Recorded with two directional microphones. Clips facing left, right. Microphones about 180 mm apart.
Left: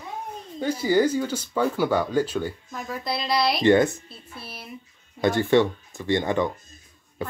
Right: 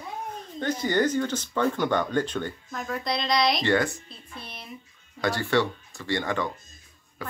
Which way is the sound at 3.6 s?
20° left (ahead or behind).